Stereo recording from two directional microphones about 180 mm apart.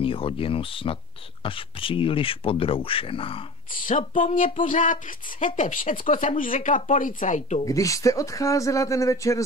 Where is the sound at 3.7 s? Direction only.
50° left (ahead or behind).